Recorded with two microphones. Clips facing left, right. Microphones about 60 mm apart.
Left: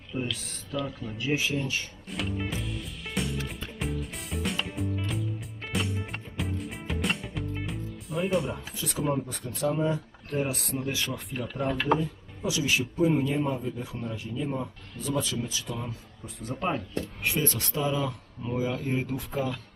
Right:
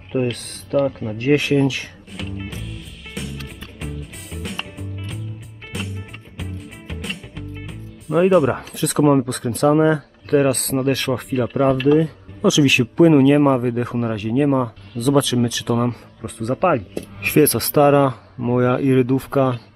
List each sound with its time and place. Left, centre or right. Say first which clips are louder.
0.1 s speech: right 11 dB; right
2.1 s music: right 1 dB; centre
8.1 s speech: right 14 dB; right